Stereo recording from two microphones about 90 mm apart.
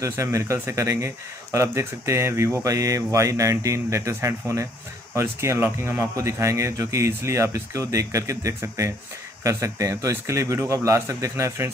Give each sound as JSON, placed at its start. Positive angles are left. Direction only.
{"t": 0.0, "sound": "speech", "side_deg": -35}